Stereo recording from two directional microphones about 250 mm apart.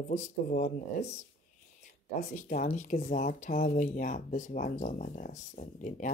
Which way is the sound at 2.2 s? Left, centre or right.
Left.